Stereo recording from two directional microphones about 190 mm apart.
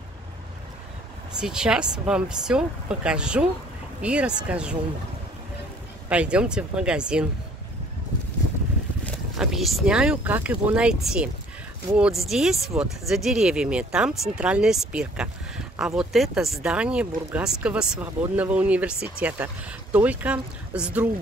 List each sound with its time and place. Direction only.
1.4 s speech: 5° right (ahead or behind)
6.0 s speech: 5° right (ahead or behind)
9.4 s speech: centre (ahead or behind)